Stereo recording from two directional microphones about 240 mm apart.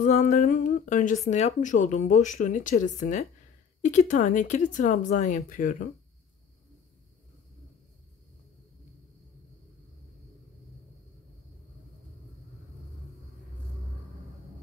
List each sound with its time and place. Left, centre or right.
0.0 s speech: left